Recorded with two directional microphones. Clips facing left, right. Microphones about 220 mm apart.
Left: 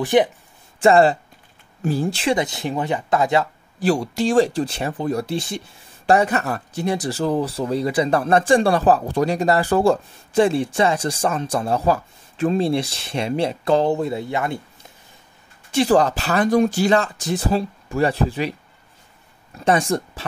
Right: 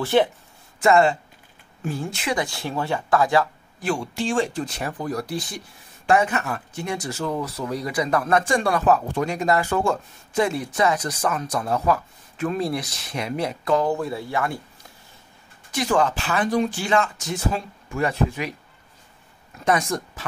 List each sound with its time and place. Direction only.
0.0 s speech: 15° left (ahead or behind)
0.7 s speech: 30° left (ahead or behind)
3.8 s speech: 35° left (ahead or behind); by 14.6 s 20° left (ahead or behind)
15.7 s speech: 35° left (ahead or behind)
19.6 s speech: 30° left (ahead or behind)